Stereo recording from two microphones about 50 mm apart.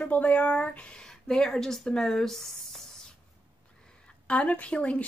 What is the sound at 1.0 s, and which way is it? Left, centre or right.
Speech, centre.